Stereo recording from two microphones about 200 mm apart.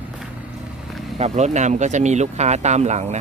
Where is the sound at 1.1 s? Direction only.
35° right (ahead or behind).